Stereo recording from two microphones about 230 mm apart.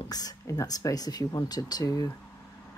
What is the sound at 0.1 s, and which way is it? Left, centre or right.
Speech, centre.